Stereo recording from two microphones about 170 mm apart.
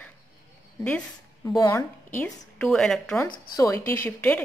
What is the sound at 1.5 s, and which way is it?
A woman's voice, 20° left (ahead or behind).